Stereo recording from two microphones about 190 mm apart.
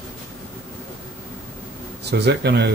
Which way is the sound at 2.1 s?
60° right (ahead or behind).